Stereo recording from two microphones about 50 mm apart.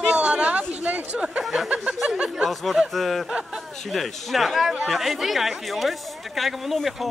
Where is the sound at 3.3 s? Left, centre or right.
Centre.